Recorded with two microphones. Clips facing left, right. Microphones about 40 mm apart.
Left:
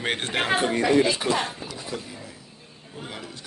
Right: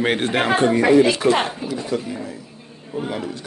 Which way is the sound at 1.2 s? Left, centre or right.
Right.